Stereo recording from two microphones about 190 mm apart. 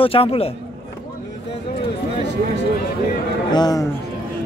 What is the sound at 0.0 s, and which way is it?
Speech, 30° left (ahead or behind).